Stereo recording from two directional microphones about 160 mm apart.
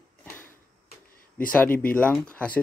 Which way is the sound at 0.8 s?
60° left (ahead or behind).